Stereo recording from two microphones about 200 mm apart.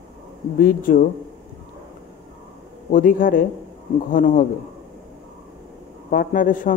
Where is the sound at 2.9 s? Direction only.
45° left (ahead or behind).